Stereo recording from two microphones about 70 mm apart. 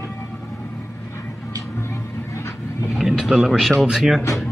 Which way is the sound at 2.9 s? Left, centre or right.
Centre.